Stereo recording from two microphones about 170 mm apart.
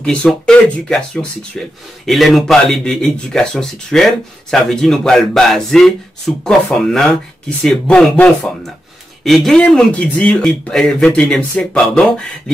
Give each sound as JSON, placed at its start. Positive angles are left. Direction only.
{"t": 0.0, "sound": "speech", "side_deg": 5}